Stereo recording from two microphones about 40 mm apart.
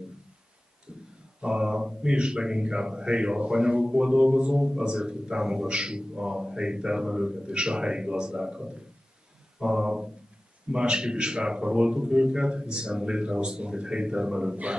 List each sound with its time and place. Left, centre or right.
1.4 s speech: right